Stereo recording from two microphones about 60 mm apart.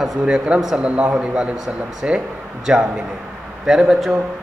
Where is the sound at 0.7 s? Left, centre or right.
Right; by 3.8 s centre.